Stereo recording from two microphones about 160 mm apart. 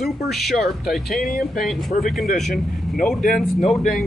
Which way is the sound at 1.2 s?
60° left (ahead or behind).